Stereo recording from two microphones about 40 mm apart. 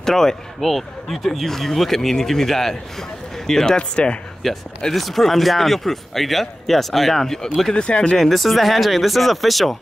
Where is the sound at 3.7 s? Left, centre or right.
Left.